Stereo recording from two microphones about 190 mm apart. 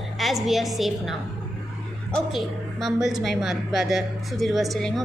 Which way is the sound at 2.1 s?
Centre (ahead or behind).